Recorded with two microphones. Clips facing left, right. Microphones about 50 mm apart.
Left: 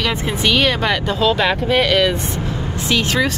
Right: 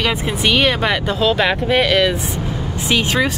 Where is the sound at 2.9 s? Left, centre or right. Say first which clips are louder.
Right 1 dB; centre.